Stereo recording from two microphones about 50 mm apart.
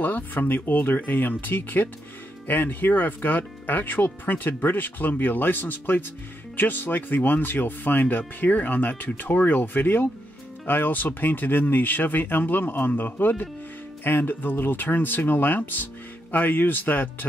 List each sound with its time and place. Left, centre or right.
0.0 s speech: left